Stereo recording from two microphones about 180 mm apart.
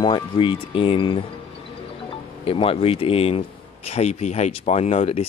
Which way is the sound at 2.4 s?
30° left (ahead or behind).